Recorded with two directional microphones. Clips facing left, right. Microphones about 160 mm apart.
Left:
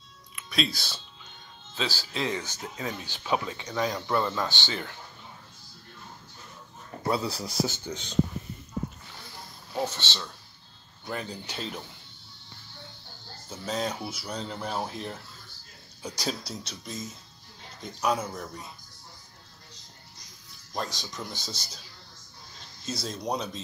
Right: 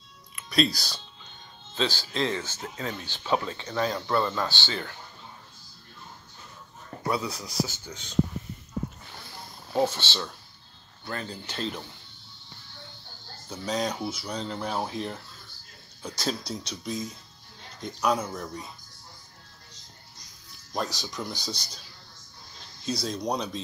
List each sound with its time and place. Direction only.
0.4 s music: centre (ahead or behind)
0.7 s speech: 5° left (ahead or behind); by 4.9 s 20° left (ahead or behind)
7.1 s speech: 30° left (ahead or behind)
9.9 s speech: 10° right (ahead or behind)
11.1 s speech: 15° left (ahead or behind)
13.5 s speech: 5° left (ahead or behind)
20.7 s speech: centre (ahead or behind)
22.8 s speech: 5° left (ahead or behind)